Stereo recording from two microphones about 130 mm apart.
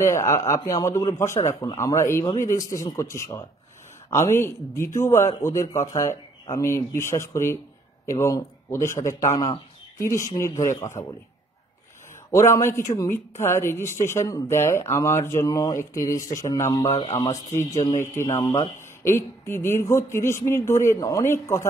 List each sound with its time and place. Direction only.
0.0 s speech: 20° left (ahead or behind)
12.3 s speech: 25° left (ahead or behind)
16.9 s a man's voice: 50° left (ahead or behind)
18.0 s speech: 20° left (ahead or behind)
18.4 s speech: 35° left (ahead or behind)
19.0 s speech: 20° left (ahead or behind)